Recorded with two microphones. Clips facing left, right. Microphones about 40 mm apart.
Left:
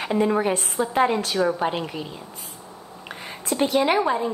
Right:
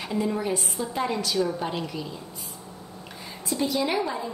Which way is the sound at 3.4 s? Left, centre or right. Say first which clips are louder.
Left 5 dB; left.